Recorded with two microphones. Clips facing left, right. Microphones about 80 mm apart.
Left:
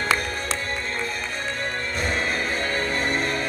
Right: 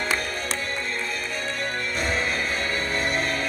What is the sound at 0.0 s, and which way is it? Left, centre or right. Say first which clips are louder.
Music: left 2 dB; left.